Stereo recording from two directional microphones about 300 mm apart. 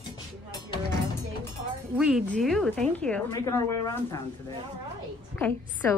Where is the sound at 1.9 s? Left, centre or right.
Centre.